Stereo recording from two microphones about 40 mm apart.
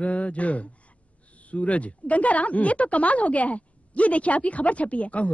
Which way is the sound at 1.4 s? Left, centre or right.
Left.